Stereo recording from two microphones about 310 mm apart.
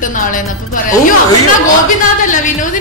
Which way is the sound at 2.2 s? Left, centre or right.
Left.